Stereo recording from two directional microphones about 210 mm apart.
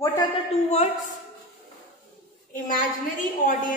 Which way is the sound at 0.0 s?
15° left (ahead or behind).